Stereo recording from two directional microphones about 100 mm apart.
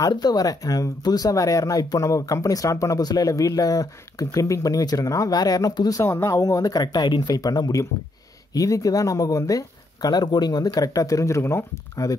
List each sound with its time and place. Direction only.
0.1 s speech: 40° left (ahead or behind)